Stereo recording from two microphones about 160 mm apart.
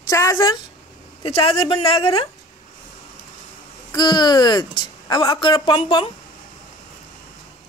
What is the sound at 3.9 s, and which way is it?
A woman's voice, 25° left (ahead or behind).